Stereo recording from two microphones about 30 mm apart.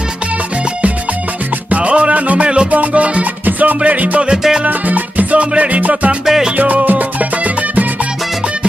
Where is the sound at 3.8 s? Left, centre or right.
Right.